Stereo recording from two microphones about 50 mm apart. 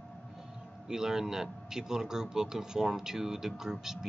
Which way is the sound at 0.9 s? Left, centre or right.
Centre.